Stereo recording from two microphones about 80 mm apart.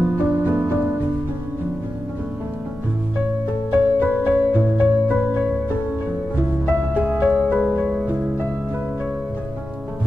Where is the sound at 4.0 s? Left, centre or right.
Right.